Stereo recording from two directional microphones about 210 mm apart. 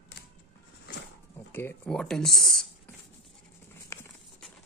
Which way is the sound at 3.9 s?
10° left (ahead or behind).